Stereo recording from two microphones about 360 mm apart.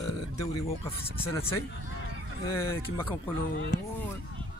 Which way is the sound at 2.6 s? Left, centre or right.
Centre.